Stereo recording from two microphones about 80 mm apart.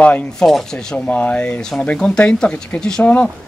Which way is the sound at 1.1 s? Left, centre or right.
Centre.